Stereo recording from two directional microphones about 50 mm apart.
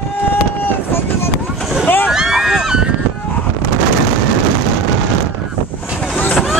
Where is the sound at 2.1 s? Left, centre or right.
Centre.